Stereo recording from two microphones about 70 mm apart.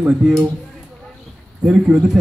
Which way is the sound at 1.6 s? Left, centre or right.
Centre.